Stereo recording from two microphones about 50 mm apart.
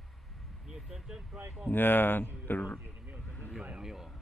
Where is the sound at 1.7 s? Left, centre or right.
Left.